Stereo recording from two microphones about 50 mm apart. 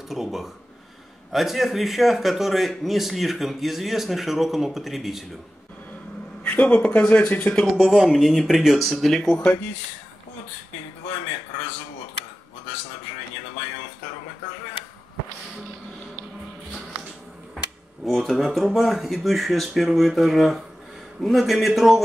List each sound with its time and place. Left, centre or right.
0.1 s speech: centre
6.4 s a sound: left
6.9 s speech: left
7.7 s speech: centre
18.0 s speech: centre